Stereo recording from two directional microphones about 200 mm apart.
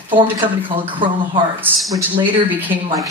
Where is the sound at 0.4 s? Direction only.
25° right (ahead or behind).